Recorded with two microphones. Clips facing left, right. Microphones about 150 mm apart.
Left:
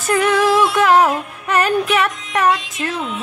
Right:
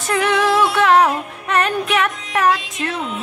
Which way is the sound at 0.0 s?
5° left (ahead or behind).